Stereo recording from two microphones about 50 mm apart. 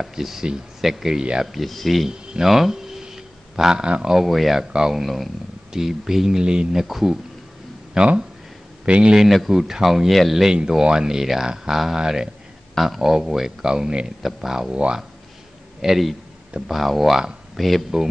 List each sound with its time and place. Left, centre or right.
0.0 s speech: centre
2.0 s a sound: centre
4.1 s speech: centre
7.9 s speech: centre
9.5 s speech: centre
12.7 s speech: centre
15.8 s speech: centre